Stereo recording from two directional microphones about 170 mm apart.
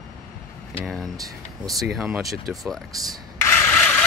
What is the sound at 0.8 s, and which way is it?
Speech, centre (ahead or behind).